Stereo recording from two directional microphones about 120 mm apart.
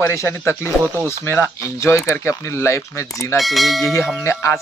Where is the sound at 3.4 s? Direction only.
Centre (ahead or behind).